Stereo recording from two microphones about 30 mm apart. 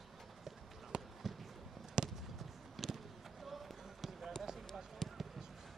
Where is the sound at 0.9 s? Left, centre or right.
Right.